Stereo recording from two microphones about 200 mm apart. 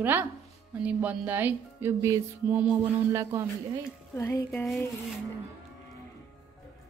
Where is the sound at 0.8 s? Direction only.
10° right (ahead or behind).